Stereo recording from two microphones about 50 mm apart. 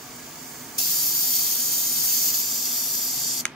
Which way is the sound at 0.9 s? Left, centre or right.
Centre.